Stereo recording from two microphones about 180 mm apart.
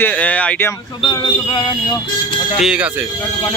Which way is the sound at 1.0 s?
30° left (ahead or behind).